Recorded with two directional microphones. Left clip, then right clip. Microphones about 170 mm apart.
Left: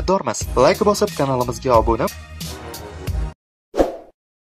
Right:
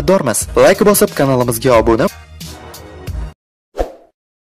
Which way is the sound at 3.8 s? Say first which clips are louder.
Left 3 dB; centre (ahead or behind).